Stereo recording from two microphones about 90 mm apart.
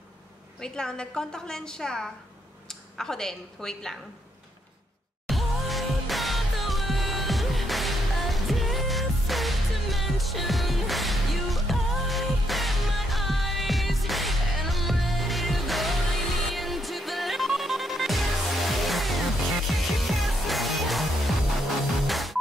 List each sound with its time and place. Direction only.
0.6 s a woman's voice: 5° left (ahead or behind)
5.3 s music: centre (ahead or behind)